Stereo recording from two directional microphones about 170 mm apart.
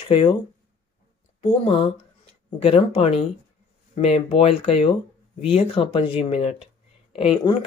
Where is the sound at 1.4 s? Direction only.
35° left (ahead or behind).